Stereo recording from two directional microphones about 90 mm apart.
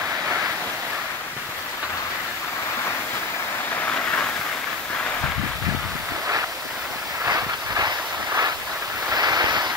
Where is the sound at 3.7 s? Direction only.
20° left (ahead or behind).